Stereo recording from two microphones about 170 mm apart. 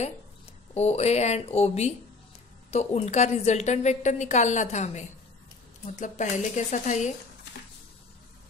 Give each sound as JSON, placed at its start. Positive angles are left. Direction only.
{"t": 0.7, "sound": "a woman's voice", "side_deg": 40}